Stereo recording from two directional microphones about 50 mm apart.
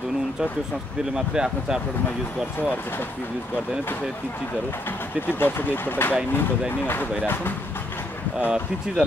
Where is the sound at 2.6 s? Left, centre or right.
Left.